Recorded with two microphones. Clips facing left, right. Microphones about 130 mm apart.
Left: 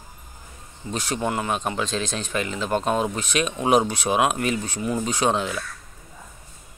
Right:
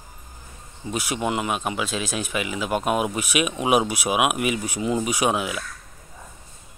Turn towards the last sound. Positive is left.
turn(degrees=-10)  # may be behind; listen again after turning